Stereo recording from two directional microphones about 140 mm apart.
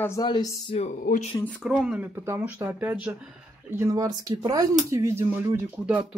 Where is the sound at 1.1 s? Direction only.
90° left.